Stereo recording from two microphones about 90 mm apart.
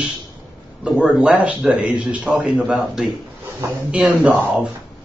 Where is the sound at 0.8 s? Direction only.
10° right (ahead or behind).